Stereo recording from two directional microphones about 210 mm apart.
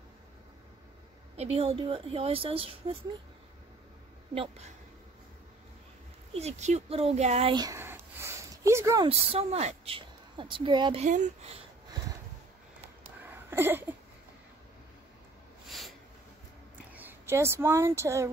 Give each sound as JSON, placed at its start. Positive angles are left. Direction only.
{"t": 1.3, "sound": "a woman's voice", "side_deg": -30}
{"t": 4.3, "sound": "a woman's voice", "side_deg": -30}
{"t": 6.3, "sound": "speech", "side_deg": -30}
{"t": 7.5, "sound": "a sound", "side_deg": -15}
{"t": 9.1, "sound": "a woman's voice", "side_deg": -30}
{"t": 11.1, "sound": "speech", "side_deg": -35}
{"t": 13.3, "sound": "a sound", "side_deg": -10}
{"t": 15.6, "sound": "snort", "side_deg": 0}
{"t": 16.9, "sound": "speech", "side_deg": -10}